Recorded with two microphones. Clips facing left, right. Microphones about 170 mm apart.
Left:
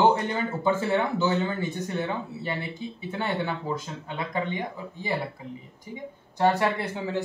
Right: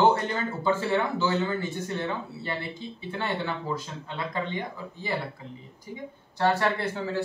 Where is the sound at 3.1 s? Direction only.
15° left (ahead or behind).